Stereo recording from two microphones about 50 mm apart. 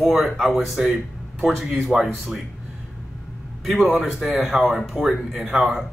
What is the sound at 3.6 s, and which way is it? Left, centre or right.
Speech, centre.